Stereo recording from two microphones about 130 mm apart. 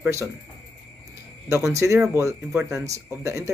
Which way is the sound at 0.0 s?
20° right (ahead or behind).